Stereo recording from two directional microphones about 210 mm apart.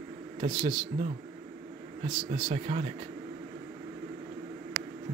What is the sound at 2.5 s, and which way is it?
Speech, 30° right (ahead or behind).